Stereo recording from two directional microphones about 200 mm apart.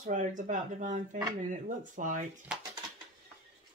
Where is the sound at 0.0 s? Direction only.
40° right (ahead or behind).